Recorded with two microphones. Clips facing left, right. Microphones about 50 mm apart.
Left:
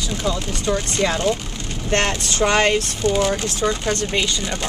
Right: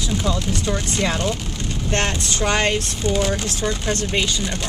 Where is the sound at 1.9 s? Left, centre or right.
Left.